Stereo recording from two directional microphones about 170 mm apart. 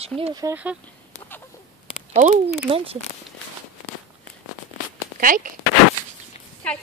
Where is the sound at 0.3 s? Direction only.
20° right (ahead or behind).